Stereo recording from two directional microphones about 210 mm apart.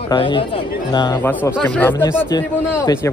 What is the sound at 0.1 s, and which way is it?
A man's voice, 25° left (ahead or behind).